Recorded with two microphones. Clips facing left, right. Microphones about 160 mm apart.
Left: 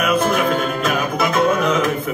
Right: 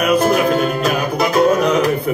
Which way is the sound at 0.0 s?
35° right (ahead or behind).